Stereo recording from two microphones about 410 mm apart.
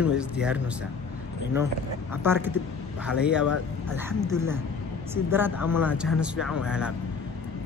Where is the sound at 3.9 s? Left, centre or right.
Centre.